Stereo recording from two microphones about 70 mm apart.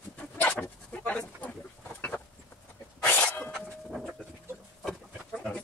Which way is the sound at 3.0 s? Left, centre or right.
Left.